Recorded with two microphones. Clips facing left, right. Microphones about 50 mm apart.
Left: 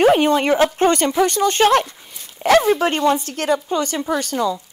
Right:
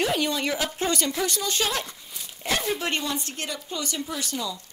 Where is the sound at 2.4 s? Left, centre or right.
Left.